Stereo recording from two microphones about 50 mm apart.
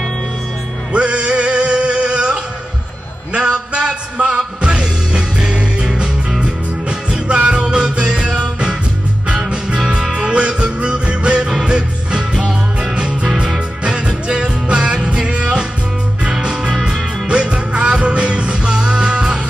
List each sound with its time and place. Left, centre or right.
0.9 s music: right
10.1 s music: right